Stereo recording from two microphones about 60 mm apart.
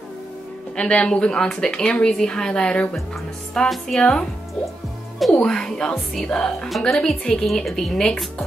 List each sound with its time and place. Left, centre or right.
0.7 s speech: centre
3.5 s speech: centre
4.0 s speech: centre
5.3 s speech: centre